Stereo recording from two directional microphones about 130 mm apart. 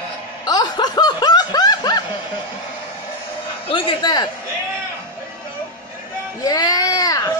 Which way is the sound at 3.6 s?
40° left (ahead or behind).